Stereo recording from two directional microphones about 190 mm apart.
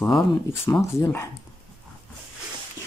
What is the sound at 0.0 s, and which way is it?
Speech, 10° left (ahead or behind).